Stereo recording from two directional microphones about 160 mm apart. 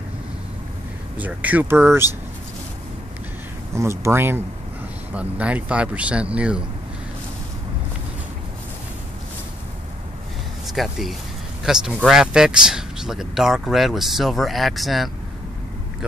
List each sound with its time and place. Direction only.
1.1 s speech: 10° right (ahead or behind)
3.7 s speech: 15° right (ahead or behind)
10.7 s speech: centre (ahead or behind)